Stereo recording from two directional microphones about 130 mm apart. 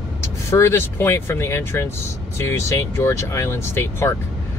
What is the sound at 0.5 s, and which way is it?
Speech, 20° left (ahead or behind).